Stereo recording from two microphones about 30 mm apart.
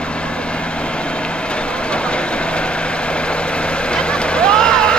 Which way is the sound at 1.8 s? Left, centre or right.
Left.